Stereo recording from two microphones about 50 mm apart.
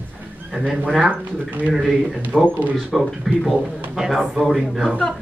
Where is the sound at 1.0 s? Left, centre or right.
Right.